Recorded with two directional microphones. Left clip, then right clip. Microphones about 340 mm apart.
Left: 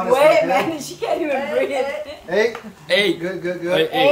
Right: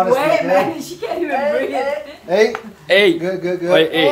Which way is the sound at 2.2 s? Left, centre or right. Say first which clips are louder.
Right 4 dB; right.